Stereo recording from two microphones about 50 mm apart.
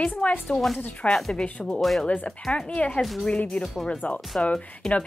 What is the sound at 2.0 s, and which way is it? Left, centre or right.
Speech, left.